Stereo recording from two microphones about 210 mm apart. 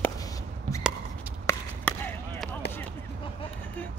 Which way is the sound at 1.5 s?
15° left (ahead or behind).